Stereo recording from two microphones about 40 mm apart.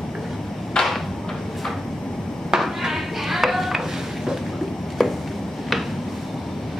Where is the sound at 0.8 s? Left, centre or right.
Centre.